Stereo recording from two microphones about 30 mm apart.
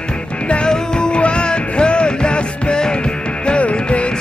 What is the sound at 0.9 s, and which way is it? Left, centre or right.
Music, left.